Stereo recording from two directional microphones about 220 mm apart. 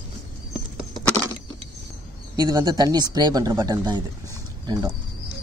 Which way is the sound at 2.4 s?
20° right (ahead or behind).